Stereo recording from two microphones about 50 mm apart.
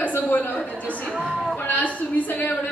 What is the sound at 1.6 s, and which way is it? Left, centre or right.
Speech, left.